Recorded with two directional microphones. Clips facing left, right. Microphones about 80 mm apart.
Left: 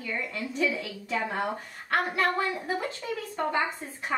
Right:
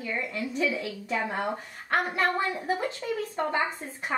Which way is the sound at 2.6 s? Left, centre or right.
Right.